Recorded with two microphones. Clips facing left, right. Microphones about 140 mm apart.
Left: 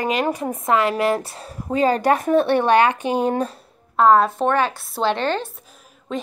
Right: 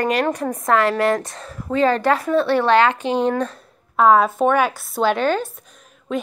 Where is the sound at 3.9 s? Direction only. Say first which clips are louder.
Even; 5° right (ahead or behind).